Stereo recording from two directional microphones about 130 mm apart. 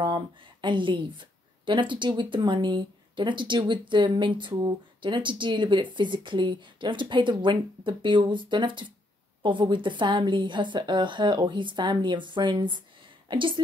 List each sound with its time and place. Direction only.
0.0 s speech: 35° right (ahead or behind)